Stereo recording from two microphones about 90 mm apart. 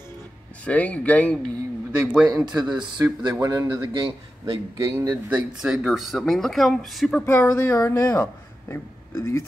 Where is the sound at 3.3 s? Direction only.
40° right (ahead or behind).